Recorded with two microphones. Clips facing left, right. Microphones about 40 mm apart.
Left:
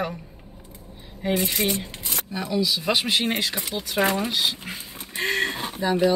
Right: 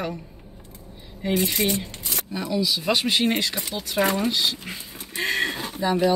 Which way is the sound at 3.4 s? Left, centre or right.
Left.